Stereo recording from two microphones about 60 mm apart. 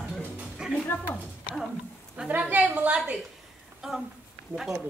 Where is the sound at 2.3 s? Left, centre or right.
Right.